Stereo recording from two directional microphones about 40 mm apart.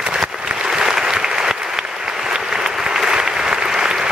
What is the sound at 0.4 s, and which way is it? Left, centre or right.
Applause, right.